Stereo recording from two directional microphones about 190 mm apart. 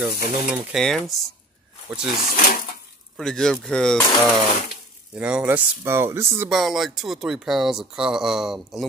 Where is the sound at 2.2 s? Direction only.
45° left (ahead or behind).